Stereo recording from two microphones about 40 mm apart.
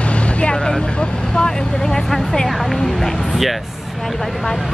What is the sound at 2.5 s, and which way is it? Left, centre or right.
Speech, centre.